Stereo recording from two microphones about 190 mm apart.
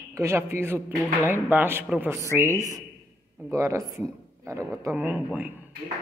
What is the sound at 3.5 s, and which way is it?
A man's voice, 15° right (ahead or behind).